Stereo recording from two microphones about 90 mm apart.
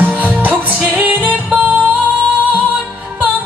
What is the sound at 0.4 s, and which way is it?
Music, 15° right (ahead or behind).